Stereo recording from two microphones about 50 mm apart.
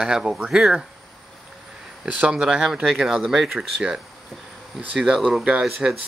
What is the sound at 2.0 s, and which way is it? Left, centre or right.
Speech, right.